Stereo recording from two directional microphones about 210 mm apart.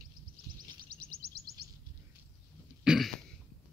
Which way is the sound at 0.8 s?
45° right (ahead or behind).